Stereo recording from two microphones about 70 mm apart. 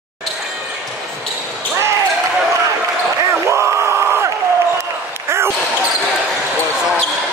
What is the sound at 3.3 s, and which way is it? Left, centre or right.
Crowd, right.